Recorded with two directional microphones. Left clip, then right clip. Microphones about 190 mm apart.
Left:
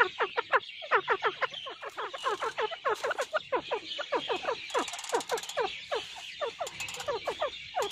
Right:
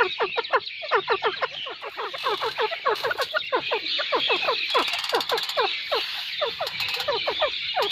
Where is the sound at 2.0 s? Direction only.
25° left (ahead or behind).